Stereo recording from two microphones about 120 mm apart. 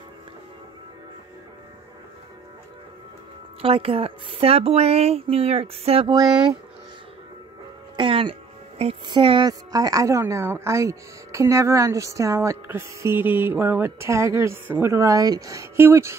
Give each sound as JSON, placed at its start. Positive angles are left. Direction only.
{"t": 3.6, "sound": "speech", "side_deg": -50}
{"t": 6.0, "sound": "speech", "side_deg": -35}
{"t": 7.9, "sound": "speech", "side_deg": -45}
{"t": 9.5, "sound": "speech", "side_deg": -30}